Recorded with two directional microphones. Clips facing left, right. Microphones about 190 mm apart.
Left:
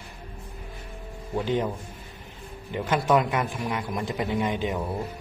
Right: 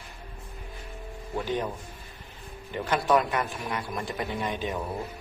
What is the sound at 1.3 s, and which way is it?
Speech, 20° left (ahead or behind).